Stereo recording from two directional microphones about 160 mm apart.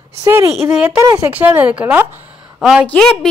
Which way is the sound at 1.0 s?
20° right (ahead or behind).